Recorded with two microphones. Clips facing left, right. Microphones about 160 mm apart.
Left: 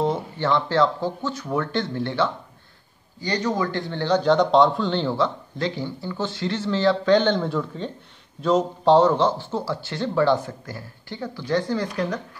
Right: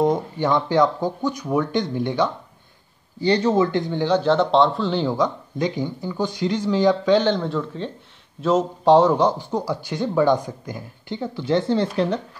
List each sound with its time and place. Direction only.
0.0 s speech: 15° right (ahead or behind)
3.2 s speech: 30° right (ahead or behind)
3.9 s speech: 10° right (ahead or behind); by 12.2 s 30° right (ahead or behind)